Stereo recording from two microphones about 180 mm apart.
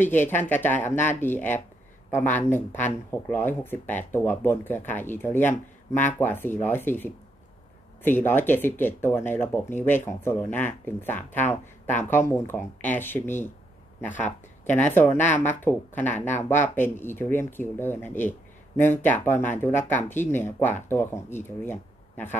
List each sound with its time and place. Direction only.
0.0 s speech: 10° left (ahead or behind)
14.1 s speech: 45° left (ahead or behind)
14.9 s speech: 10° left (ahead or behind)